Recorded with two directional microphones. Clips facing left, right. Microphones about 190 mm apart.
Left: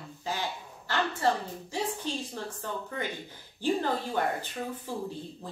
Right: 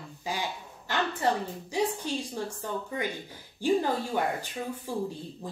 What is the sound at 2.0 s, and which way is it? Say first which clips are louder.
Speech: right 2 dB; 15° right (ahead or behind).